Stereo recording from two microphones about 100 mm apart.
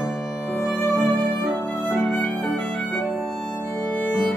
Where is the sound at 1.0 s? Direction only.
15° left (ahead or behind).